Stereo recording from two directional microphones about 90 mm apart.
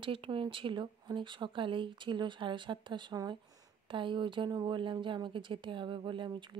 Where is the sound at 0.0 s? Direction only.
75° right (ahead or behind).